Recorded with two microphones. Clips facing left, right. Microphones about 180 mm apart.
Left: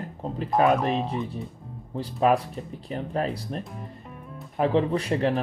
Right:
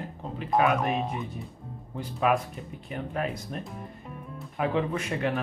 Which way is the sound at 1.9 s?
35° left (ahead or behind).